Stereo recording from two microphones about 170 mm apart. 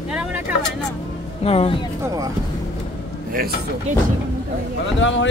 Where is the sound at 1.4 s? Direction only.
35° left (ahead or behind).